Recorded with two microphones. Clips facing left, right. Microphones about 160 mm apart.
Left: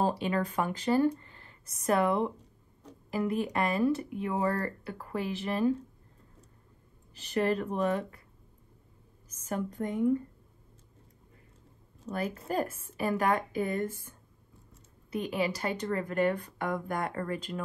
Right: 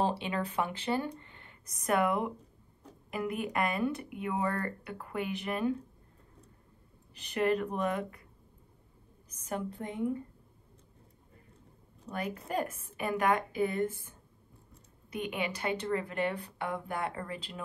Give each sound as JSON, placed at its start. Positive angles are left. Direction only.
{"t": 0.2, "sound": "speech", "side_deg": 40}
{"t": 7.2, "sound": "speech", "side_deg": 35}
{"t": 9.5, "sound": "speech", "side_deg": 40}
{"t": 12.4, "sound": "speech", "side_deg": 35}